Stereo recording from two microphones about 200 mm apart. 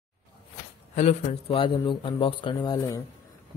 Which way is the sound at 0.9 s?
35° left (ahead or behind).